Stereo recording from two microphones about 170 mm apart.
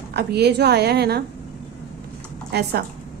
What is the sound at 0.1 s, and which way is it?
A woman's voice, 70° right (ahead or behind).